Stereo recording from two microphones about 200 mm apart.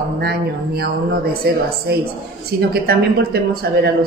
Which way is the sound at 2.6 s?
55° right (ahead or behind).